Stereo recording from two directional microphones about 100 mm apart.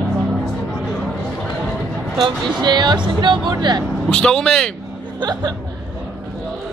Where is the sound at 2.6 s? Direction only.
45° right (ahead or behind).